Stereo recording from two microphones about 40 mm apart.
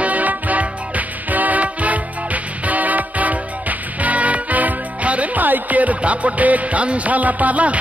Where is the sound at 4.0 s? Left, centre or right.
Right.